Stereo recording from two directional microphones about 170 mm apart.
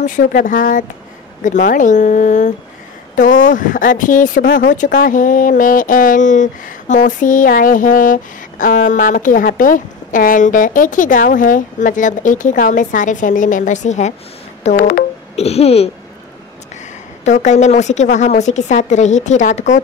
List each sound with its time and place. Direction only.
0.0 s speech: 50° left (ahead or behind)
14.8 s music: 55° left (ahead or behind)
15.3 s a sound: 40° left (ahead or behind)
17.2 s speech: 45° left (ahead or behind)